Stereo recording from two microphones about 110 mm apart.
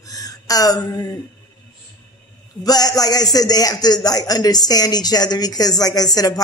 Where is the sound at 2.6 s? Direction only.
35° left (ahead or behind).